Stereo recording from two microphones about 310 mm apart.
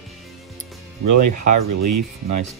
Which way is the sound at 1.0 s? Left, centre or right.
Right.